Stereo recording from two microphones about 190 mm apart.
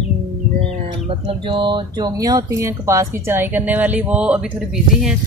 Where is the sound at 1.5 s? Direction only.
25° right (ahead or behind); by 4.4 s 5° right (ahead or behind).